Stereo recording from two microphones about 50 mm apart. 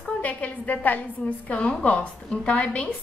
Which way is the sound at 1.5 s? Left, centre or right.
Left.